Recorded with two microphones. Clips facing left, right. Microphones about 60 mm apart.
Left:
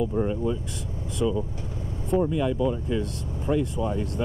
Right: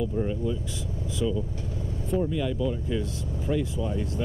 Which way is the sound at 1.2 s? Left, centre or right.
Left.